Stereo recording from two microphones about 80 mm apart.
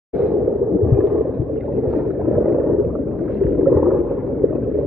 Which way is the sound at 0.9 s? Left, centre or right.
Centre.